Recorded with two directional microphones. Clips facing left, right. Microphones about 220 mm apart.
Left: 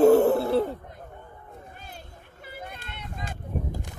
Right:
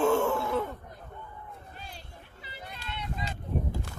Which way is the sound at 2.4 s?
50° left (ahead or behind).